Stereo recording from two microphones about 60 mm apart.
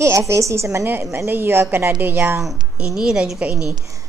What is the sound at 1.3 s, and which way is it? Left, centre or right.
Speech, right.